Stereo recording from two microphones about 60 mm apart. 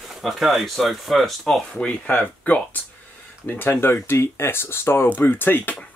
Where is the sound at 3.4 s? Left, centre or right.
Left.